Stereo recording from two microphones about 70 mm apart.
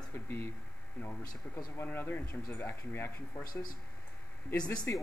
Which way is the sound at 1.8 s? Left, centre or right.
Left.